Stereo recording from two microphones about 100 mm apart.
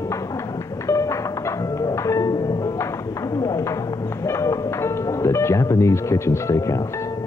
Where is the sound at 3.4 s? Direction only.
30° left (ahead or behind).